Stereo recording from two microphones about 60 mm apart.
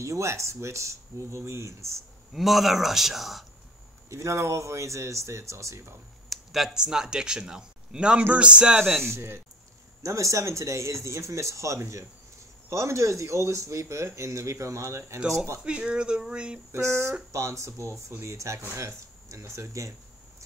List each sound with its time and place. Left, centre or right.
0.0 s speech: right
2.3 s a man's voice: centre
4.1 s speech: right
6.2 s speech: centre
9.0 s speech: right
10.0 s speech: right
15.6 s speech: centre
16.7 s speech: right